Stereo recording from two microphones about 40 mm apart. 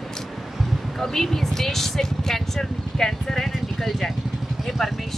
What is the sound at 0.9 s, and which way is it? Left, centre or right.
Speech, centre.